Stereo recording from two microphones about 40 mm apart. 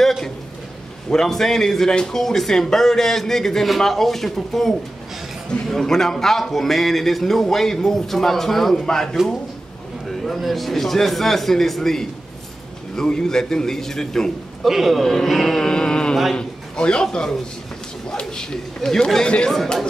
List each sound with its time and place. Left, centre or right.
0.0 s a sound: centre
1.1 s speech: centre
10.0 s speech: centre
14.6 s speech: centre
15.0 s speech: centre
15.6 s a sound: left
16.3 s a man's voice: left
18.5 s speech: centre
19.2 s speech: left
19.5 s speech: centre